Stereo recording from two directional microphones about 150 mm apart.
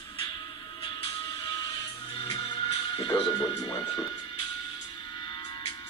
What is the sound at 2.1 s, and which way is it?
Music, 35° left (ahead or behind).